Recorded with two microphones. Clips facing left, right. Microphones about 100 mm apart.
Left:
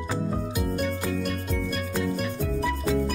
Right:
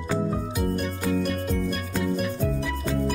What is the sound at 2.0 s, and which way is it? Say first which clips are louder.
Music: right 2 dB; 5° right (ahead or behind).